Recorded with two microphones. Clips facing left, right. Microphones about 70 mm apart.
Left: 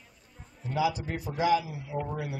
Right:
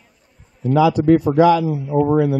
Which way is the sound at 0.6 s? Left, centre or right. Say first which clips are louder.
Right 13 dB; right.